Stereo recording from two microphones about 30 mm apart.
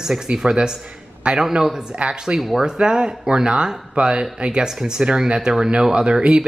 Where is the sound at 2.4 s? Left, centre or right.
Centre.